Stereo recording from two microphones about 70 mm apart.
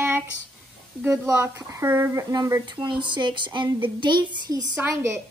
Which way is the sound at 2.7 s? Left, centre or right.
Right.